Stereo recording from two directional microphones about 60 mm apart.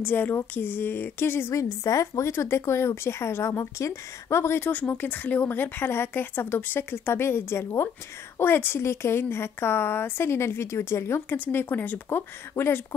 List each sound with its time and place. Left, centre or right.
0.0 s speech: left
1.5 s speech: left
4.6 s speech: left
11.2 s speech: left